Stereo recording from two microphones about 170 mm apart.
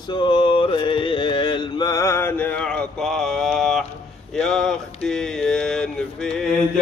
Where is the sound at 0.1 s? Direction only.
25° left (ahead or behind); by 6.5 s 5° left (ahead or behind).